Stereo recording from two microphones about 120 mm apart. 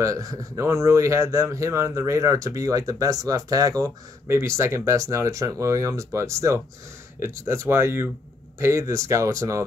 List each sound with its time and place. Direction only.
0.0 s speech: 30° right (ahead or behind)